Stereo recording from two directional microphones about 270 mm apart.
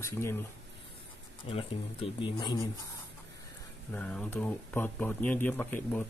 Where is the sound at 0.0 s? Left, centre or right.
Centre.